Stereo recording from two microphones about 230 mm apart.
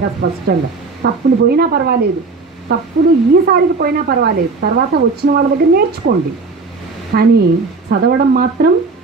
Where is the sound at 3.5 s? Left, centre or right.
Right.